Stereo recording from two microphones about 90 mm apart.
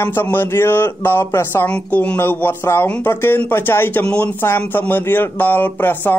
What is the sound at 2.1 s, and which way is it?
Speech, 25° left (ahead or behind).